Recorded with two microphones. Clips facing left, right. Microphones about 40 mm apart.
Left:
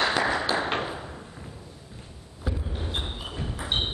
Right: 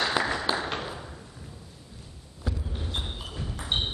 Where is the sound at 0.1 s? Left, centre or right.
Centre.